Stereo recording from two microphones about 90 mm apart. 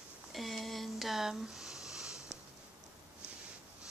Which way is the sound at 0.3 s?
Centre (ahead or behind).